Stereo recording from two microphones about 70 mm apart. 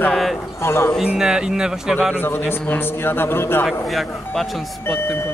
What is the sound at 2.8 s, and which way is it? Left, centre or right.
Speech, left.